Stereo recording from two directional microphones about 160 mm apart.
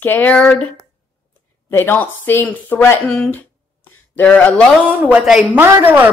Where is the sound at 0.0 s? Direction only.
10° left (ahead or behind).